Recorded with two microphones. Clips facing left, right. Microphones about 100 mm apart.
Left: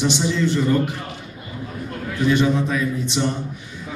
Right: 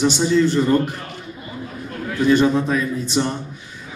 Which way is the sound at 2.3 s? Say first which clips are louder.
Right 3 dB; 40° right (ahead or behind).